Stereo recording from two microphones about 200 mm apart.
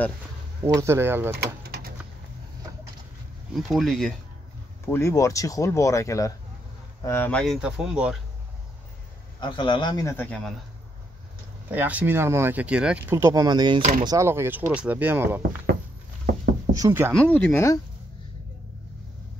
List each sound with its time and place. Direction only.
0.7 s speech: 15° right (ahead or behind)
1.3 s a sound: 50° right (ahead or behind)
3.5 s speech: centre (ahead or behind)
4.8 s speech: 10° left (ahead or behind)
9.4 s a man's voice: 25° left (ahead or behind); by 10.5 s 5° left (ahead or behind)
11.7 s speech: 10° right (ahead or behind)
16.7 s speech: 15° right (ahead or behind)
17.1 s speech: 5° left (ahead or behind)